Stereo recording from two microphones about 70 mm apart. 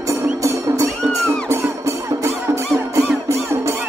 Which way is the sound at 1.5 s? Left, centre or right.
Right.